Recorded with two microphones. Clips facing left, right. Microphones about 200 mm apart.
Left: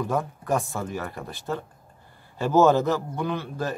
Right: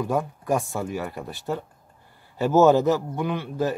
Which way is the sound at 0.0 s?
15° right (ahead or behind).